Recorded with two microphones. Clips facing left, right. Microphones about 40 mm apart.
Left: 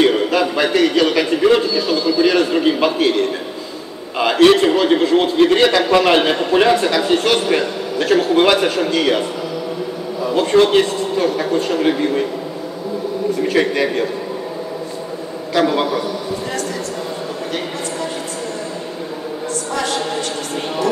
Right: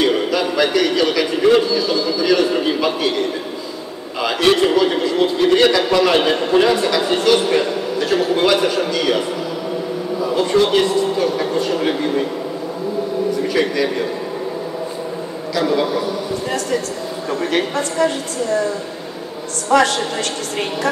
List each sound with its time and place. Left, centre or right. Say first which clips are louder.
0.0 s a sound: left 2 dB; left
4.2 s a man's voice: left 4 dB; left
10.3 s a man's voice: left 3 dB; left
13.5 s speech: left 4 dB; left
15.5 s a man's voice: left 2 dB; left
19.7 s a woman's voice: right 9 dB; right